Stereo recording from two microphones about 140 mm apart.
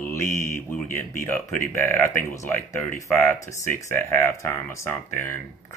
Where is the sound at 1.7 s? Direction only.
15° left (ahead or behind).